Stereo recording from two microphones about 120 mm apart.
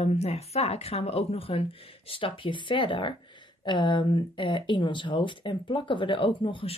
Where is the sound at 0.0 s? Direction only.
60° left (ahead or behind).